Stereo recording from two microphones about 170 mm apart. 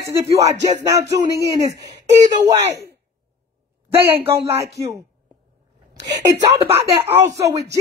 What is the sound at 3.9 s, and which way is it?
Speech, 15° right (ahead or behind).